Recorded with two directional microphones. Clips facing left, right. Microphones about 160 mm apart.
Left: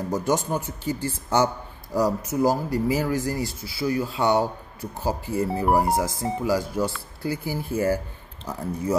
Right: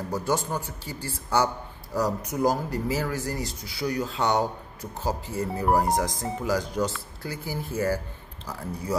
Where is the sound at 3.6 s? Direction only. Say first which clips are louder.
Left 3 dB; 5° left (ahead or behind).